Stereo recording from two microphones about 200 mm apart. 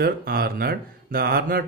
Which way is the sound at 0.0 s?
50° right (ahead or behind).